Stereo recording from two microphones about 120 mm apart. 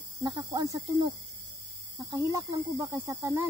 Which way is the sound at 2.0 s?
25° right (ahead or behind).